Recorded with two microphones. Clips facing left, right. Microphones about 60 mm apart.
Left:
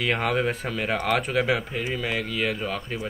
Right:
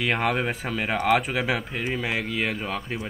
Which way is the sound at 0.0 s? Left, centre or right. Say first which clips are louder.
Even; centre.